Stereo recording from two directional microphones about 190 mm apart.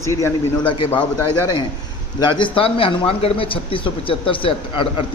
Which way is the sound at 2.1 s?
25° left (ahead or behind).